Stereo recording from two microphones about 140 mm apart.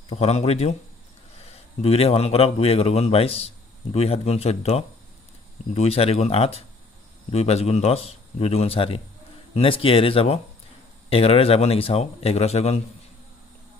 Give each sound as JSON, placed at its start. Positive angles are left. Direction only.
{"t": 0.1, "sound": "speech", "side_deg": 50}